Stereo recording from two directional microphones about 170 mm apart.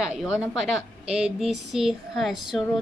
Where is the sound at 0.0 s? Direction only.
5° right (ahead or behind).